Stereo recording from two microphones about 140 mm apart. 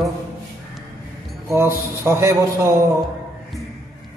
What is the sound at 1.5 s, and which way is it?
Speech, 20° right (ahead or behind).